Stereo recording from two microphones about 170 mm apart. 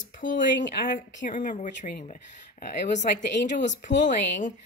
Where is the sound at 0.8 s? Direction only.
50° left (ahead or behind).